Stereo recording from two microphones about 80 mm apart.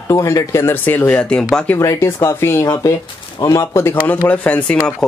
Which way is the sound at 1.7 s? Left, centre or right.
Left.